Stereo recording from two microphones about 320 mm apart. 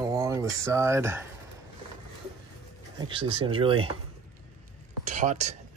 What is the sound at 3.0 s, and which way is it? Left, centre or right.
Speech, centre.